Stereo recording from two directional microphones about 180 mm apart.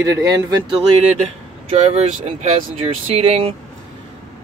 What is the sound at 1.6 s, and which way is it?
Speech, 35° right (ahead or behind).